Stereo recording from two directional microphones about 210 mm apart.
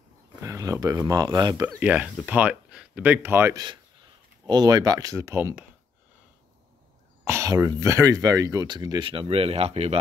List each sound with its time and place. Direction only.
0.4 s speech: 15° right (ahead or behind)
7.2 s speech: 15° right (ahead or behind); by 9.9 s 30° right (ahead or behind)